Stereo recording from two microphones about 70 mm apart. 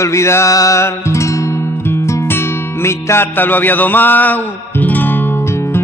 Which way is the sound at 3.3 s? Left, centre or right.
Left.